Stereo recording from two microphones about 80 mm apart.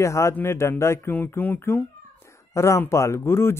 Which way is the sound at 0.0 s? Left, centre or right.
Left.